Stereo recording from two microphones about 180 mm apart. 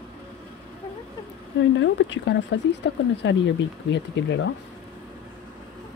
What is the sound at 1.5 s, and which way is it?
Speech, 90° left.